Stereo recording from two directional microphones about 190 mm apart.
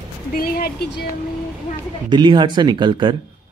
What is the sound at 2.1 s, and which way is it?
Speech, 25° right (ahead or behind).